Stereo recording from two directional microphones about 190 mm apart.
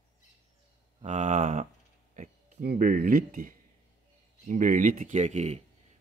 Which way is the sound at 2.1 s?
40° right (ahead or behind).